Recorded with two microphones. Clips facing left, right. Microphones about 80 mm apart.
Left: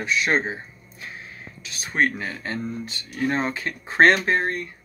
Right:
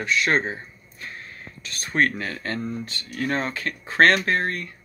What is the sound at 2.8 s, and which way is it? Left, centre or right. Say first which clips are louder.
Speech: left 2 dB; centre.